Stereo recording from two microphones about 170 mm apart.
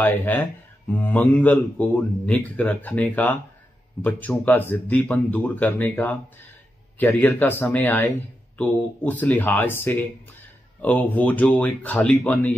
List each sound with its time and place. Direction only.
0.0 s speech: 10° left (ahead or behind)